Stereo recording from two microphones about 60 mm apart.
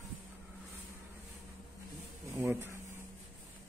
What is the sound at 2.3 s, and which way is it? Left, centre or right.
Speech, right.